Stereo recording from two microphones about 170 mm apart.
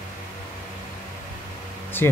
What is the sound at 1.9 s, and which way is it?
Speech, 10° left (ahead or behind).